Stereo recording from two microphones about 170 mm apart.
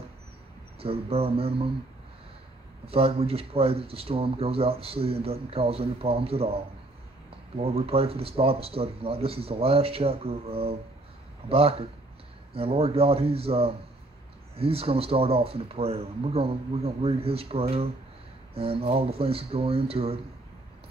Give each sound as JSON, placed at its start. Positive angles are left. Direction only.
{"t": 0.7, "sound": "speech", "side_deg": -35}
{"t": 2.9, "sound": "speech", "side_deg": -35}